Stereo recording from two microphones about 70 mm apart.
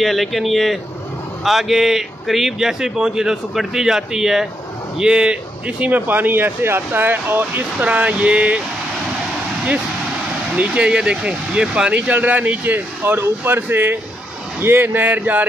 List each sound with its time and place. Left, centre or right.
0.0 s a man's voice: centre
10.5 s speech: centre